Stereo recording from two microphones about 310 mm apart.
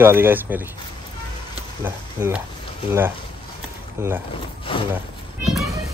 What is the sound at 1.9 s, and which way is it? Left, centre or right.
Speech, centre.